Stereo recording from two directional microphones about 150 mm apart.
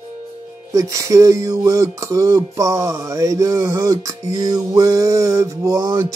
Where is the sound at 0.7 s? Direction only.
20° right (ahead or behind).